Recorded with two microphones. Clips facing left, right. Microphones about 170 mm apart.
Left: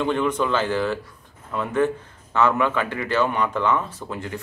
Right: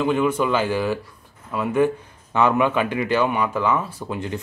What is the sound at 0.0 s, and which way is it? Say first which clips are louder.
A man's voice: right 2 dB; 5° right (ahead or behind).